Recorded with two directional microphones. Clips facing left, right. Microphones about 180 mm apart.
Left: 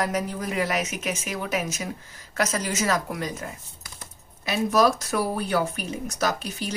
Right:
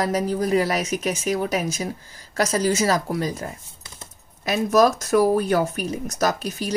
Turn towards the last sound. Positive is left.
turn(degrees=-40)  # may be behind; listen again after turning